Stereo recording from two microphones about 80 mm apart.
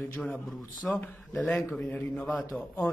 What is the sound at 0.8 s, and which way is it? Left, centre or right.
Speech, centre.